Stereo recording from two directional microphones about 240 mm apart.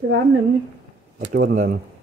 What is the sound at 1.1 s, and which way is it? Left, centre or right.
Speech, right.